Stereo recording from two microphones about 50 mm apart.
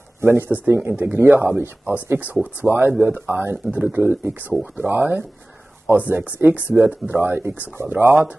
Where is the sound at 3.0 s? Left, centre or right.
Right.